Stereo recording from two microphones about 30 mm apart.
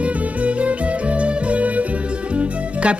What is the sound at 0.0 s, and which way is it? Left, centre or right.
Music, right.